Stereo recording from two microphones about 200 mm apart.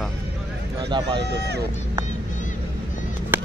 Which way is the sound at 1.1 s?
55° right (ahead or behind).